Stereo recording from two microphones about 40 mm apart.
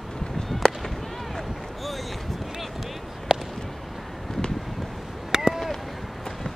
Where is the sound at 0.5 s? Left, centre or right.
Centre.